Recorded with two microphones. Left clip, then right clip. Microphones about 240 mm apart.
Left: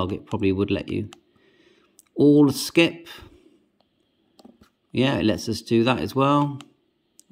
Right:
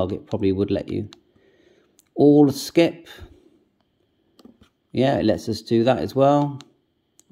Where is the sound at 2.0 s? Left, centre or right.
Left.